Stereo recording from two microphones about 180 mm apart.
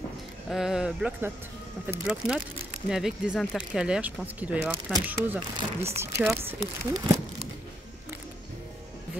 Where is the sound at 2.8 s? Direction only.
5° right (ahead or behind).